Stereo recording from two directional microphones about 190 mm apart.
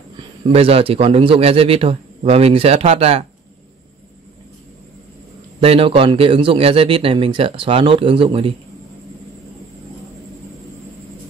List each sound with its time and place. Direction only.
0.5 s a man's voice: 30° right (ahead or behind)
5.6 s a man's voice: 30° right (ahead or behind)